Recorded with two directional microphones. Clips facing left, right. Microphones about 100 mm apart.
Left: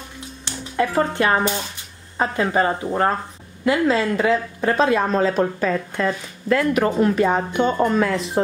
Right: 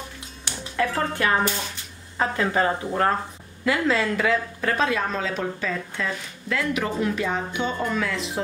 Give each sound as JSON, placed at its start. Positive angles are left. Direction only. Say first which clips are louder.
{"t": 0.7, "sound": "a woman's voice", "louder": "left 5 dB", "side_deg": 20}